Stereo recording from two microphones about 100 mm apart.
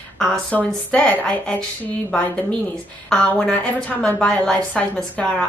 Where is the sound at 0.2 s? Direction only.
10° left (ahead or behind).